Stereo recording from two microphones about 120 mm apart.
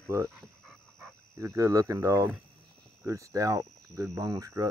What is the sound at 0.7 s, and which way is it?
Dog, centre (ahead or behind).